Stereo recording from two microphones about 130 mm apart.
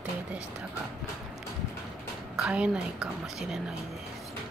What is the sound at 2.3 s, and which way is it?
A woman's voice, 10° right (ahead or behind).